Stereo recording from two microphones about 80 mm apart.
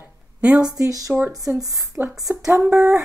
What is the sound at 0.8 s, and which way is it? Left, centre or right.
Speech, right.